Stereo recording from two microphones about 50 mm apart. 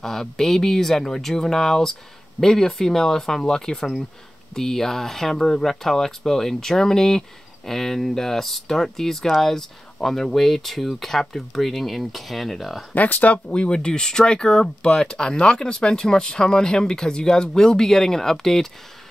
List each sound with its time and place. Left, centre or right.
0.0 s speech: centre
12.9 s speech: left
13.6 s speech: centre